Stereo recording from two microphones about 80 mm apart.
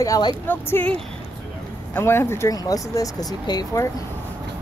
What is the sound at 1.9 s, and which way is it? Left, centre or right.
Speech, left.